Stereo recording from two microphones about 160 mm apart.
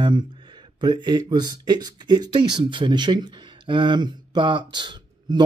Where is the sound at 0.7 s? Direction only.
30° right (ahead or behind).